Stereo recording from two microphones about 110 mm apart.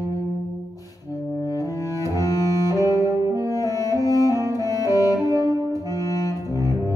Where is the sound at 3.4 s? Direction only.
35° left (ahead or behind).